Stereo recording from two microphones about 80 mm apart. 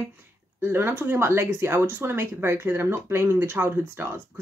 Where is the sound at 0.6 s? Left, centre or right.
Right.